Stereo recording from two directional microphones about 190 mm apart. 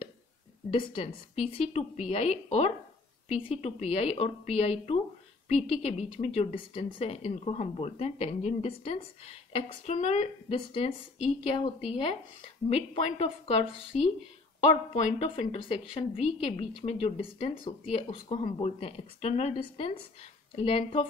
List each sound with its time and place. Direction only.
0.7 s a woman's voice: 30° left (ahead or behind)
14.9 s a woman's voice: 35° left (ahead or behind)